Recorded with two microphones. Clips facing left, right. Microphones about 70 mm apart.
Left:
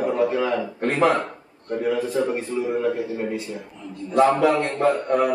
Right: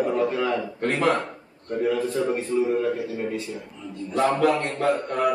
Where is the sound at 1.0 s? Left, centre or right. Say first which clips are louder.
Left 5 dB; centre.